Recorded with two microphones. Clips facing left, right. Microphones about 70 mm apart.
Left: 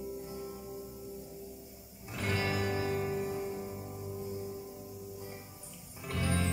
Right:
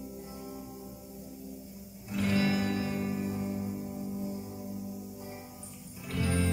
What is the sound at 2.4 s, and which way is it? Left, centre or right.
Music, left.